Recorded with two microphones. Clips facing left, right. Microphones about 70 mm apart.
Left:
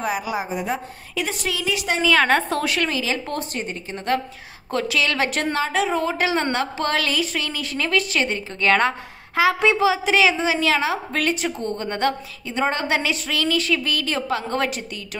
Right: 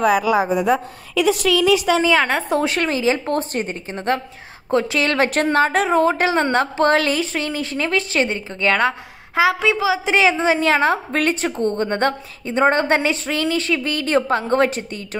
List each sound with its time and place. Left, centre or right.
0.0 s a woman's voice: right
1.1 s a woman's voice: right
2.0 s a woman's voice: centre
2.6 s a woman's voice: right
8.6 s a woman's voice: centre
9.3 s a woman's voice: centre
9.6 s a woman's voice: centre
10.0 s a woman's voice: right